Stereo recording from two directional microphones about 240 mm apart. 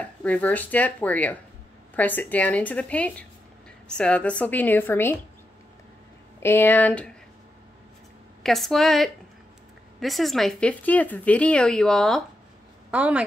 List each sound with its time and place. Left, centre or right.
0.0 s speech: centre
6.4 s speech: centre
8.4 s speech: centre